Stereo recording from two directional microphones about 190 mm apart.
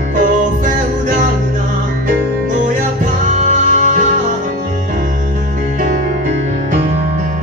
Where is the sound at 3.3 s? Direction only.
40° right (ahead or behind).